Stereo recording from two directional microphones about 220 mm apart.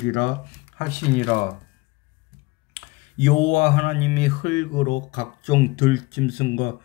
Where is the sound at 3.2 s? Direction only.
35° left (ahead or behind).